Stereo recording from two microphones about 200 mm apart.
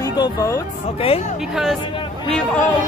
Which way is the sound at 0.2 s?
15° left (ahead or behind).